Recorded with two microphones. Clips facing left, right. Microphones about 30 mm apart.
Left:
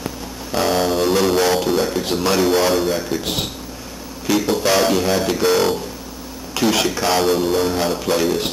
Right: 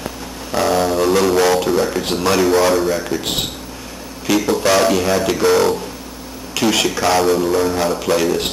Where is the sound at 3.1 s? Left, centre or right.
Centre.